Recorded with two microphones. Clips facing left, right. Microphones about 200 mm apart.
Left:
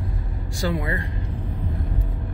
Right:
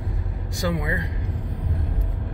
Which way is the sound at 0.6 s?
20° right (ahead or behind).